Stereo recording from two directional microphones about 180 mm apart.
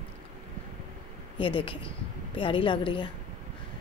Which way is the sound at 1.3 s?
30° left (ahead or behind).